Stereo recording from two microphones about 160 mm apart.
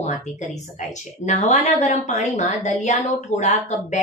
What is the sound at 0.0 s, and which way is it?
Speech, 50° left (ahead or behind).